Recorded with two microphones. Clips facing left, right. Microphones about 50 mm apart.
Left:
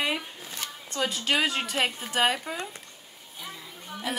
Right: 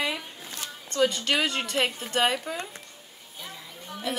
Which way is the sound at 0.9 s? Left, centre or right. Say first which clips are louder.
Right 3 dB; centre.